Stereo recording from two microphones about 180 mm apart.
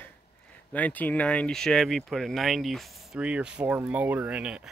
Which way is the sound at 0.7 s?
10° left (ahead or behind).